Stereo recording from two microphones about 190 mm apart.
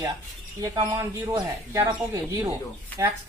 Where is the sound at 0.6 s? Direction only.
15° right (ahead or behind).